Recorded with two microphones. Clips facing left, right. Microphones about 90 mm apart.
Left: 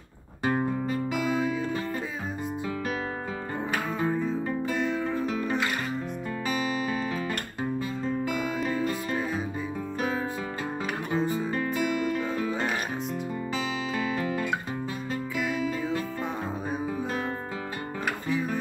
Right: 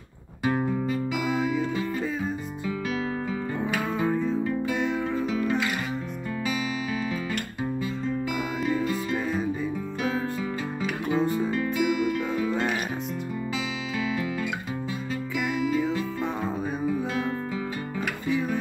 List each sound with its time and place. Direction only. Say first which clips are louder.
0.4 s music: right 1 dB; 40° left (ahead or behind)
1.2 s music: right 1 dB; centre (ahead or behind)
4.0 s music: right 3 dB; centre (ahead or behind)
6.4 s music: left 1 dB; 40° left (ahead or behind)
11.1 s music: right 2 dB; centre (ahead or behind)
11.5 s music: right 1 dB; 35° left (ahead or behind)
12.4 s music: right 3 dB; centre (ahead or behind)
13.9 s music: right 1 dB; 40° left (ahead or behind)